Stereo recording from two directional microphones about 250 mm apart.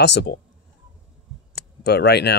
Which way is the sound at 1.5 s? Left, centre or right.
Left.